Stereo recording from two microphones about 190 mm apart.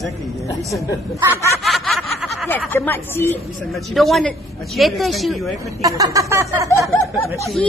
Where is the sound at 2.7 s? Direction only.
10° left (ahead or behind).